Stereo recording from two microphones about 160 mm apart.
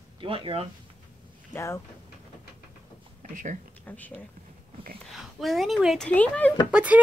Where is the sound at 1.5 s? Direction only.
15° left (ahead or behind).